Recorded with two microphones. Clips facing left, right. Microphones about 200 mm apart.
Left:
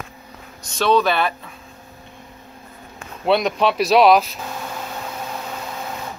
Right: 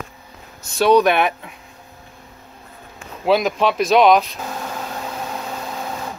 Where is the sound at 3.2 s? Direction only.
Centre (ahead or behind).